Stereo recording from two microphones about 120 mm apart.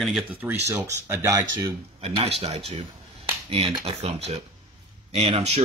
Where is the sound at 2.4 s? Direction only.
60° right (ahead or behind).